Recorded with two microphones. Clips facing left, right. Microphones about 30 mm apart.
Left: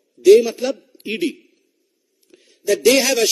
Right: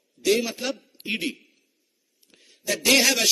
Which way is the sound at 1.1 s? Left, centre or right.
Centre.